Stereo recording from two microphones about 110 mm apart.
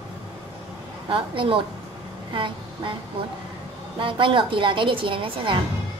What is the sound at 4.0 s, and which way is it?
A woman's voice, 50° right (ahead or behind).